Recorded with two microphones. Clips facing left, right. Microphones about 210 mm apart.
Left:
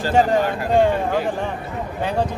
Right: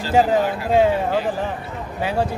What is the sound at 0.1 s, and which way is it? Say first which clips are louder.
Speech: right 1 dB; 5° right (ahead or behind).